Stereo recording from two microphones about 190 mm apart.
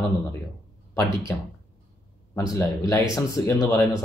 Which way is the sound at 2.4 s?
15° left (ahead or behind).